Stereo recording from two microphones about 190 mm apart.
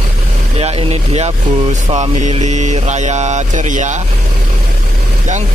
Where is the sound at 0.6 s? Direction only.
30° right (ahead or behind).